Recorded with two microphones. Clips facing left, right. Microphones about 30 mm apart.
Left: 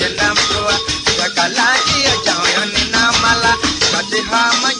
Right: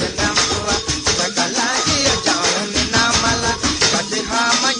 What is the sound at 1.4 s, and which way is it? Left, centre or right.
Music, left.